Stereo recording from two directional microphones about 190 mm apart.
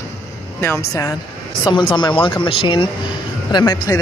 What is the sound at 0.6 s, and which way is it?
Speech, 15° left (ahead or behind).